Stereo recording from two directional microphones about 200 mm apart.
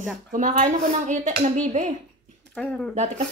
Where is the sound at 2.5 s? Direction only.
5° left (ahead or behind).